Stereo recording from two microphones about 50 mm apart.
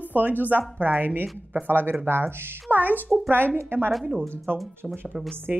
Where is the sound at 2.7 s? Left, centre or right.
Right.